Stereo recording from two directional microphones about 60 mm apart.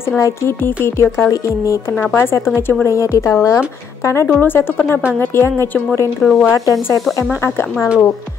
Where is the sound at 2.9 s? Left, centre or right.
Left.